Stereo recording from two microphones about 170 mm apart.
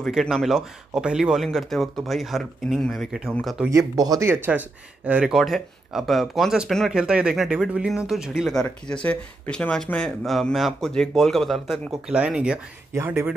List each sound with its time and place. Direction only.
0.0 s speech: centre (ahead or behind)
3.7 s speech: 20° right (ahead or behind)